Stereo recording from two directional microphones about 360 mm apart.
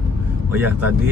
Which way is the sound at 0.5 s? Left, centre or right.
Centre.